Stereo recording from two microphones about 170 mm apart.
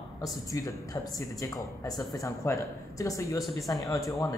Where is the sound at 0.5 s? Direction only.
20° left (ahead or behind).